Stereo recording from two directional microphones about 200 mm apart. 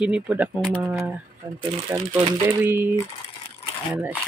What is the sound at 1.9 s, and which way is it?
Speech, 10° right (ahead or behind).